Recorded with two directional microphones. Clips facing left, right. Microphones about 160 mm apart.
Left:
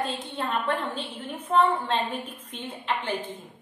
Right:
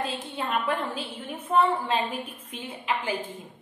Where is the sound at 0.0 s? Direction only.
5° right (ahead or behind).